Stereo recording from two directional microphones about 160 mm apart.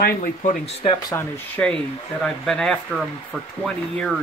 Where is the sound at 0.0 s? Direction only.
55° left (ahead or behind).